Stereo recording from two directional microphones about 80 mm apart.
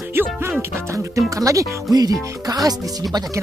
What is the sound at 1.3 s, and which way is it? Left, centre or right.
Speech, right.